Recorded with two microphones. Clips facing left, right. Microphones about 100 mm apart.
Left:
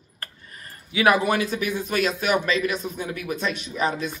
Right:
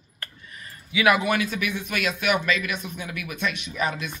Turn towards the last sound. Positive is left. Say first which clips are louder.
# left 3 dB
turn(degrees=35)  # may be behind; listen again after turning